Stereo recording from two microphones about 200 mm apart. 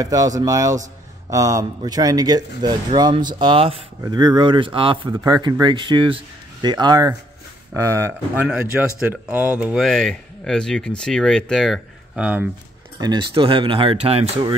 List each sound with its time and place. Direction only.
0.0 s speech: 20° right (ahead or behind)
13.0 s speech: 25° right (ahead or behind)